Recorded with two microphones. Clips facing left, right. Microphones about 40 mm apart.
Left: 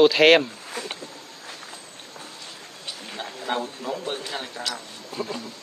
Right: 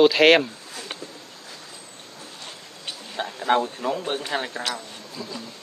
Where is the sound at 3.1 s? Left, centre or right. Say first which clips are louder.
Right 7 dB; right.